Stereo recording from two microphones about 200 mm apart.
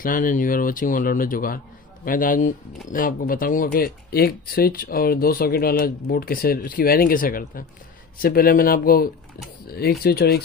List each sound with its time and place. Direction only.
0.0 s speech: 40° left (ahead or behind)